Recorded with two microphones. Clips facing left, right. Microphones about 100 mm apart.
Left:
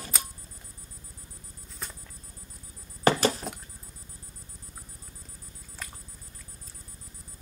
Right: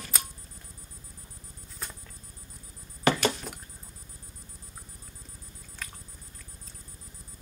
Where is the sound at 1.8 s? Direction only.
Centre (ahead or behind).